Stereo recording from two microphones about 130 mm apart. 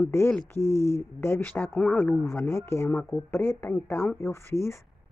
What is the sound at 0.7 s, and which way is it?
Speech, 25° right (ahead or behind).